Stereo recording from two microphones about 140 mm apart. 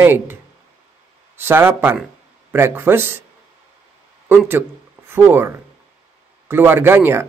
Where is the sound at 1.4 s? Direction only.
15° right (ahead or behind).